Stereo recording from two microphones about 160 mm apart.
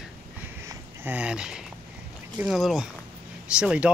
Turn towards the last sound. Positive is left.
turn(degrees=-5)  # may be behind; listen again after turning